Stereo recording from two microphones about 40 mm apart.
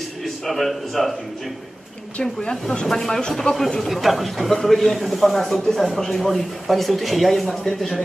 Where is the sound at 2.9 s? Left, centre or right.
Centre.